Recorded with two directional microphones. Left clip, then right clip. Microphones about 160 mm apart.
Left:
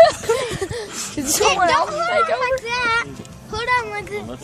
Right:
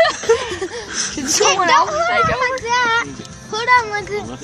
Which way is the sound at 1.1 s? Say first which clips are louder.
Right 2 dB; 35° left (ahead or behind).